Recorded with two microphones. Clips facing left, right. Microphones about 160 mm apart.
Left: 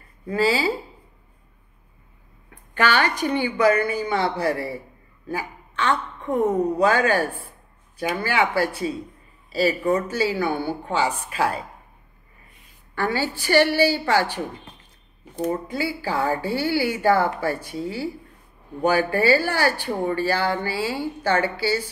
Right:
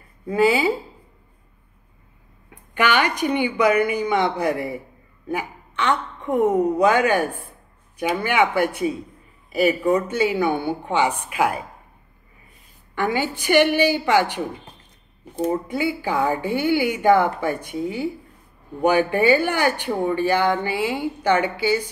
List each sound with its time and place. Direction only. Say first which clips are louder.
0.3 s a woman's voice: right 3 dB; 20° right (ahead or behind)
2.5 s a woman's voice: right 1 dB; 15° right (ahead or behind)
12.9 s speech: right 2 dB; 20° right (ahead or behind)
15.7 s a woman's voice: right 3 dB; 20° right (ahead or behind)